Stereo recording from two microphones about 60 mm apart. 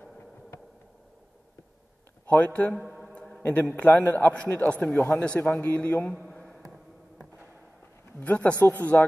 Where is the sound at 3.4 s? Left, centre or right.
Left.